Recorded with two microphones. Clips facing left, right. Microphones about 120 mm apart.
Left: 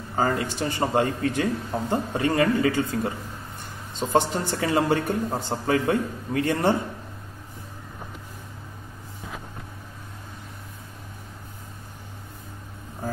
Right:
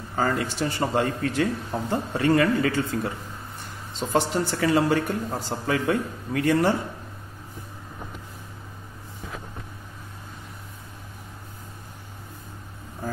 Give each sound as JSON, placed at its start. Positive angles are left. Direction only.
{"t": 0.1, "sound": "a man's voice", "side_deg": 20}